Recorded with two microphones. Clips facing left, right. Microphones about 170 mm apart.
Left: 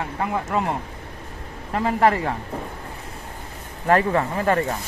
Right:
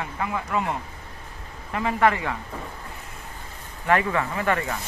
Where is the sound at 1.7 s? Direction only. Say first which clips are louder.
Left 3 dB; 35° left (ahead or behind).